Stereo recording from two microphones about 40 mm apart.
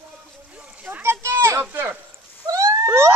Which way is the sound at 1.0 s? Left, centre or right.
Right.